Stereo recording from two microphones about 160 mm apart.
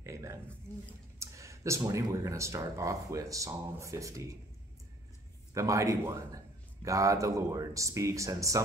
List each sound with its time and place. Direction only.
0.0 s a sound: 20° right (ahead or behind)
1.2 s a man's voice: 20° right (ahead or behind)
5.5 s a man's voice: 20° right (ahead or behind)